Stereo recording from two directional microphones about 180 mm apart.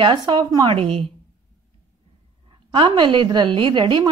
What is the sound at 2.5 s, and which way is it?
A woman's voice, 25° right (ahead or behind).